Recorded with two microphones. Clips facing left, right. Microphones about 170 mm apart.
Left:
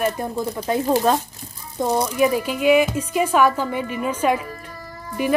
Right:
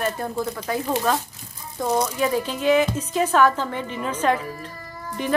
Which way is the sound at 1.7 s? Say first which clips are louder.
Left 2 dB; 15° left (ahead or behind).